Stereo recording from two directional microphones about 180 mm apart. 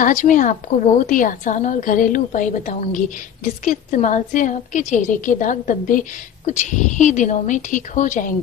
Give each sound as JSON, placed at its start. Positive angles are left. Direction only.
{"t": 0.0, "sound": "a woman's voice", "side_deg": 45}